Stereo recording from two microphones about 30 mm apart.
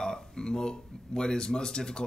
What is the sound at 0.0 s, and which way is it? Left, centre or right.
Speech, centre.